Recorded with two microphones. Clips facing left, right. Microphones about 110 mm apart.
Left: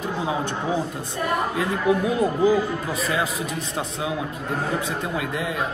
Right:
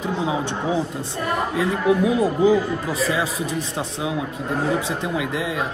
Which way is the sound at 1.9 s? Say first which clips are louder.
Right 2 dB; 20° right (ahead or behind).